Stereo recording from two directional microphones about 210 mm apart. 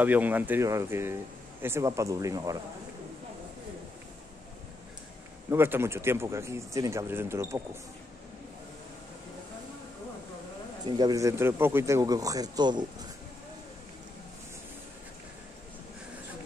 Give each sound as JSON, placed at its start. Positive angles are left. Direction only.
{"t": 0.0, "sound": "speech", "side_deg": -10}
{"t": 5.5, "sound": "speech", "side_deg": -10}
{"t": 10.9, "sound": "speech", "side_deg": -20}